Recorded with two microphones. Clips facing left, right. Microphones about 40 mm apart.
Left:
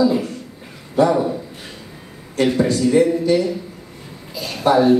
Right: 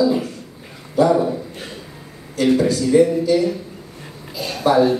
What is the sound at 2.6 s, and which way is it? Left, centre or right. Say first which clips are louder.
Speech: even; left.